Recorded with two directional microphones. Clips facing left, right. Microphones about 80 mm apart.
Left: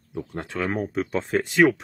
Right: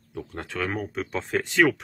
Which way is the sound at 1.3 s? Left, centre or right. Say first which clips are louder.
Left 2 dB; centre.